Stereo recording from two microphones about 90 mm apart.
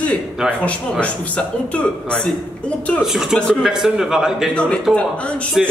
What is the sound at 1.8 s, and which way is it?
Mantra, 15° left (ahead or behind).